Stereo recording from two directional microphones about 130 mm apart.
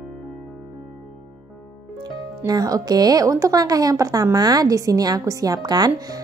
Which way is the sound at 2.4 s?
30° right (ahead or behind).